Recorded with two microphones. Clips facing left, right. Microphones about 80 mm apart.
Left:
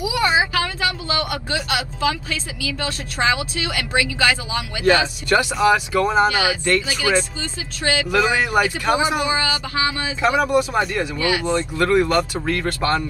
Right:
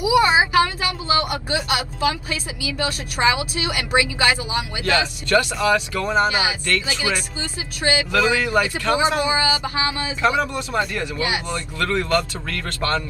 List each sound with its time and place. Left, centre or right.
0.0 s speech: right
4.8 s speech: centre
6.2 s speech: right
7.8 s speech: right
8.1 s speech: centre
9.2 s speech: right
10.2 s speech: centre
11.1 s speech: right
11.4 s speech: left